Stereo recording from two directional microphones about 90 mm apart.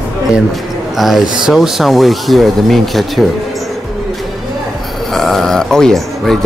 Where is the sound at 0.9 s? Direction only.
Centre (ahead or behind).